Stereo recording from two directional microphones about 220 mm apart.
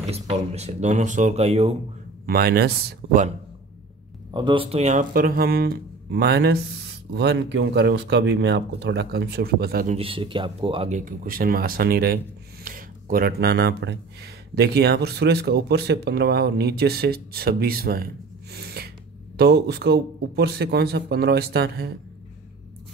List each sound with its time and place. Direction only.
0.0 s speech: 25° right (ahead or behind)
2.2 s speech: 45° right (ahead or behind)
4.3 s speech: 20° right (ahead or behind); by 9.9 s 40° right (ahead or behind)
9.9 s speech: 25° right (ahead or behind); by 18.0 s 45° right (ahead or behind)
18.5 s gasp: 45° right (ahead or behind)
19.3 s speech: 45° right (ahead or behind)